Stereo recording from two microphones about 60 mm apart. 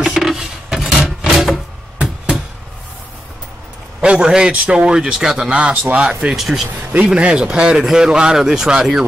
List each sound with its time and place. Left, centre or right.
0.0 s a sound: centre
1.2 s music: centre
4.0 s speech: centre
6.3 s speech: centre
7.1 s speech: centre